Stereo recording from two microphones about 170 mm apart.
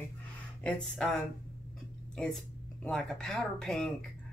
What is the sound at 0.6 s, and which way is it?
Speech, 5° left (ahead or behind).